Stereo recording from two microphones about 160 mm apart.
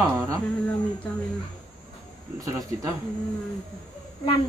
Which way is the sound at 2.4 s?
20° right (ahead or behind).